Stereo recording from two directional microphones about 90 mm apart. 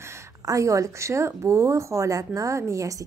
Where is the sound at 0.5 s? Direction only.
35° right (ahead or behind).